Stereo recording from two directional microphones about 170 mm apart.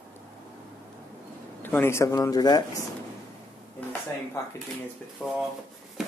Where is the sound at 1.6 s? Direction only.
10° left (ahead or behind).